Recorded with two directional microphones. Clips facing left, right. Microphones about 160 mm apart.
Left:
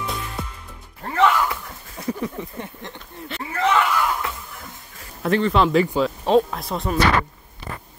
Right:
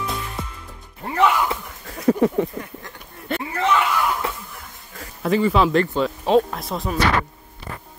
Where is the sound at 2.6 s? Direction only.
25° left (ahead or behind).